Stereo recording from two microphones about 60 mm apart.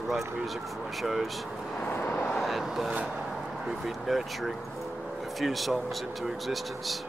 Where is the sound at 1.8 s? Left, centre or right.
Left.